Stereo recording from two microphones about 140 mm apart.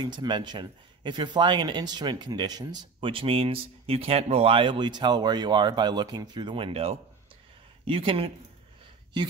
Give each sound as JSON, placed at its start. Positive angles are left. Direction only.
{"t": 0.0, "sound": "speech", "side_deg": -35}